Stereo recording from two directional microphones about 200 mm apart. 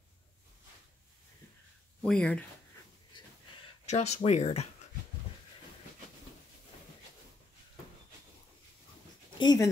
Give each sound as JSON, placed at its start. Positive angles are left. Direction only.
{"t": 2.0, "sound": "speech", "side_deg": 5}
{"t": 3.1, "sound": "a sound", "side_deg": 25}
{"t": 3.8, "sound": "speech", "side_deg": 35}
{"t": 9.4, "sound": "speech", "side_deg": 20}